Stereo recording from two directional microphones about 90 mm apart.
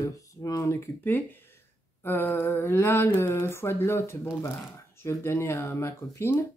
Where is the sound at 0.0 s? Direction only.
35° left (ahead or behind).